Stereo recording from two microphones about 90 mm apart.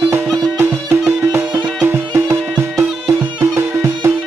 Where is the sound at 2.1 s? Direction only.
35° right (ahead or behind).